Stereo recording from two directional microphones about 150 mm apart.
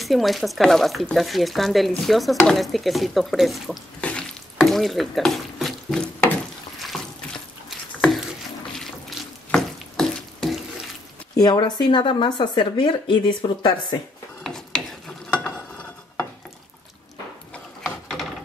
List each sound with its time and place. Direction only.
0.0 s speech: centre (ahead or behind)
4.0 s stir: 5° left (ahead or behind)
8.7 s stir: 5° left (ahead or behind)
11.3 s speech: 25° left (ahead or behind)
14.4 s a sound: 5° left (ahead or behind)
15.2 s stir: 5° left (ahead or behind)
17.8 s ratchet: centre (ahead or behind)